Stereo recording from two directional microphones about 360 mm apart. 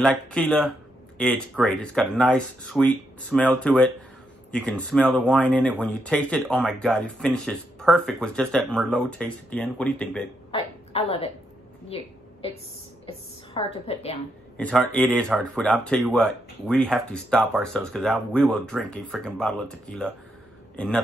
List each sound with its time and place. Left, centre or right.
0.0 s speech: centre
10.5 s a woman's voice: centre
11.9 s a sound: centre
13.0 s a woman's voice: centre
14.6 s speech: centre